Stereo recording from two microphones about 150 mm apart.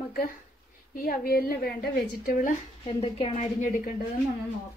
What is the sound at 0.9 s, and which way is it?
A woman's voice, 75° left (ahead or behind).